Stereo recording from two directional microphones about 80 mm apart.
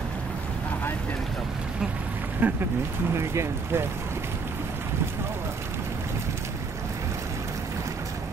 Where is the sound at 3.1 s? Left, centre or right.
Right.